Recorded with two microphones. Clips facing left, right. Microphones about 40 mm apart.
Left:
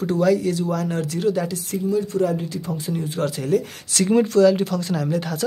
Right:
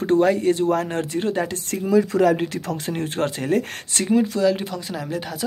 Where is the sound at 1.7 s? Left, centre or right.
Right.